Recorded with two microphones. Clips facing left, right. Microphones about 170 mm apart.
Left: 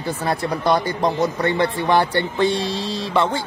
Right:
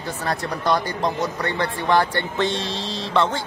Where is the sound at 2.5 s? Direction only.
20° right (ahead or behind).